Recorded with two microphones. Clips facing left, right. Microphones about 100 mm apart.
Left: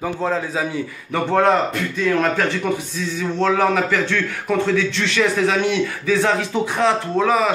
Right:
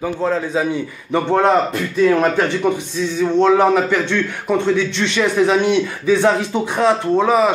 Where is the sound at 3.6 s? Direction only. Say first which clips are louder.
Right 3 dB; 15° right (ahead or behind).